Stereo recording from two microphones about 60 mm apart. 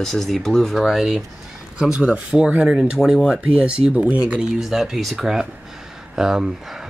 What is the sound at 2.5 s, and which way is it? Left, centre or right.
Speech, right.